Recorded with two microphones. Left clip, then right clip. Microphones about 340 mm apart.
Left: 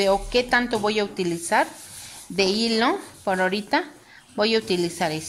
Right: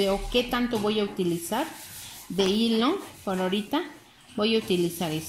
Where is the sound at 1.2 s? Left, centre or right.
Left.